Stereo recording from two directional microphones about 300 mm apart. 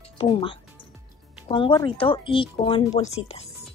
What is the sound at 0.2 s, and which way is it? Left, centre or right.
Speech, centre.